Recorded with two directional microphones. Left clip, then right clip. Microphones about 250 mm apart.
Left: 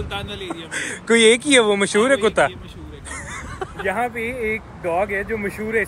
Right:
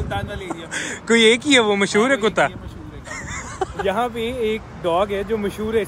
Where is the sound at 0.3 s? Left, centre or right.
Centre.